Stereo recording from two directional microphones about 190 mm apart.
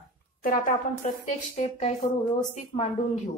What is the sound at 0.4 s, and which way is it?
A woman's voice, 45° left (ahead or behind).